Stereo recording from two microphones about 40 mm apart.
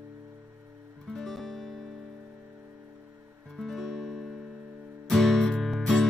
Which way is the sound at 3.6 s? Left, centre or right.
Centre.